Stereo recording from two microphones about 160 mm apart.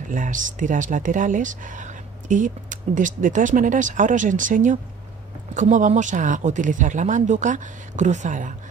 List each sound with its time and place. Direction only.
0.1 s speech: 55° right (ahead or behind)